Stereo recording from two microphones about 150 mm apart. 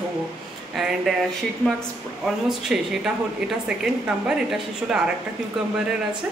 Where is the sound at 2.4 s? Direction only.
5° right (ahead or behind).